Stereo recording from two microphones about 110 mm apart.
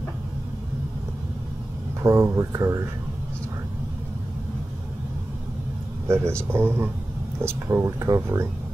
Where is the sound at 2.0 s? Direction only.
25° right (ahead or behind).